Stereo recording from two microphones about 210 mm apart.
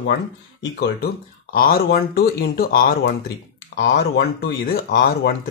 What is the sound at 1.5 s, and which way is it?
Speech, 45° left (ahead or behind).